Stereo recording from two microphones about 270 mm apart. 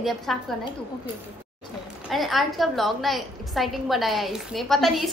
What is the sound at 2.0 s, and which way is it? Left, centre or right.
A woman's voice, centre.